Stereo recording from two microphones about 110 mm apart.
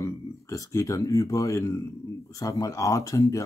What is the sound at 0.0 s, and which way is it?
A man's voice, 25° left (ahead or behind).